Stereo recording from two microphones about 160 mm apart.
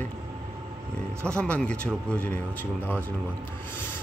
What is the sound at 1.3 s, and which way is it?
A man's voice, 5° left (ahead or behind).